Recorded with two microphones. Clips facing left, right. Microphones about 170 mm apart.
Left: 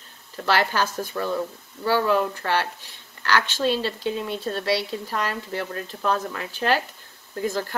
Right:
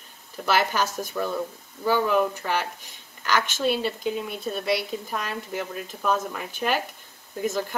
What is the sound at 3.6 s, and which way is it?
Speech, 10° right (ahead or behind).